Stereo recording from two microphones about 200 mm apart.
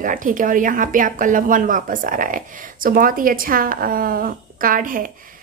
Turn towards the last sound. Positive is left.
turn(degrees=-45)  # may be behind; listen again after turning